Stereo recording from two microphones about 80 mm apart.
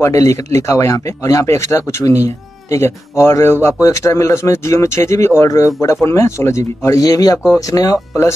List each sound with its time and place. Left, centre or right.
0.0 s speech: left
7.1 s speech: left